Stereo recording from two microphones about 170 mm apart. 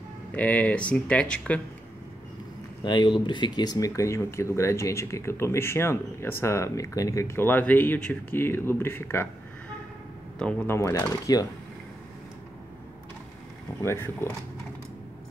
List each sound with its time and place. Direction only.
0.3 s speech: 10° left (ahead or behind)
2.8 s speech: 25° left (ahead or behind)
10.4 s speech: 15° left (ahead or behind)
13.8 s speech: 15° left (ahead or behind)